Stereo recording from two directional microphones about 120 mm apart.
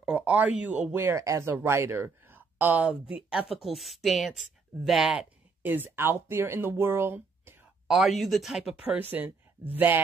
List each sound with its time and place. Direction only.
0.0 s speech: 10° right (ahead or behind)
5.6 s speech: 15° right (ahead or behind)
7.9 s speech: centre (ahead or behind)
9.8 s speech: 15° right (ahead or behind)